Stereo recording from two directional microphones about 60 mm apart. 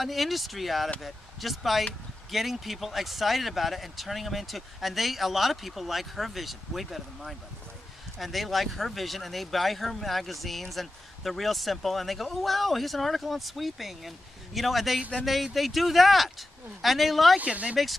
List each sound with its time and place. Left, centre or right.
0.0 s speech: centre
17.4 s speech: right